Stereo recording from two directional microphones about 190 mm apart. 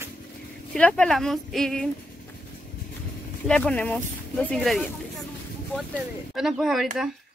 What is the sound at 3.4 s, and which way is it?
Speech, 5° left (ahead or behind).